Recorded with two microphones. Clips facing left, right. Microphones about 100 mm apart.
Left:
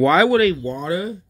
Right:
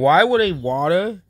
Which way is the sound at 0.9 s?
70° right (ahead or behind).